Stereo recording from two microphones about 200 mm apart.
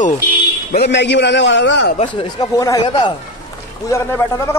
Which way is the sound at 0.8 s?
60° left (ahead or behind).